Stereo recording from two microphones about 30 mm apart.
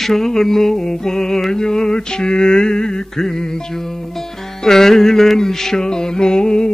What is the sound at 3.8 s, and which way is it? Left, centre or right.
Music, centre.